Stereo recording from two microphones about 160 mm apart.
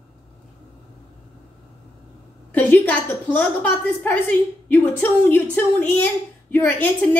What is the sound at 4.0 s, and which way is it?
A woman's voice, 10° left (ahead or behind).